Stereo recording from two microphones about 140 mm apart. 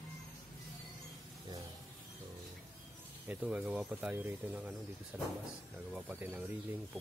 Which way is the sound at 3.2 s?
10° right (ahead or behind).